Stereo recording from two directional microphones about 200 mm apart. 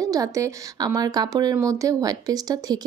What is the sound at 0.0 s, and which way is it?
Speech, 15° right (ahead or behind).